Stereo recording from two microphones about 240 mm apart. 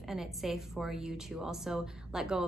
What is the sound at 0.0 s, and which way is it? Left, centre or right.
A woman's voice, centre.